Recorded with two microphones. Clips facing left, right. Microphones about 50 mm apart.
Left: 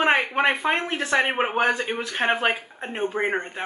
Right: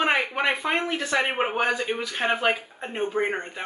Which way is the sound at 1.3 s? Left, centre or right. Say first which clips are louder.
Left 2 dB; centre.